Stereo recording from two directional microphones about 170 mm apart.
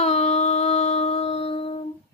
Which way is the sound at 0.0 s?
40° left (ahead or behind).